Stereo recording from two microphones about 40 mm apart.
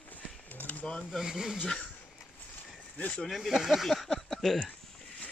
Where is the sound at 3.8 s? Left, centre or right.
Centre.